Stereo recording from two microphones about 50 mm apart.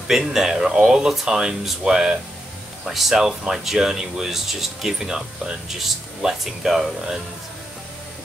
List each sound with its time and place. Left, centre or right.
0.1 s speech: centre